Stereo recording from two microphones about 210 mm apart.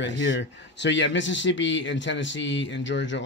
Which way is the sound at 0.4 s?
55° left (ahead or behind).